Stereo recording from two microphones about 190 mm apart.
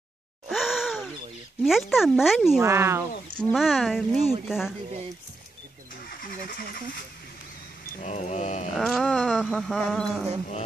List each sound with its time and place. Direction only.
0.5 s gasp: centre (ahead or behind)
1.6 s speech: centre (ahead or behind)
2.6 s speech: 15° right (ahead or behind)
3.3 s speech: centre (ahead or behind)
8.0 s a sound: 35° left (ahead or behind)
8.7 s speech: centre (ahead or behind)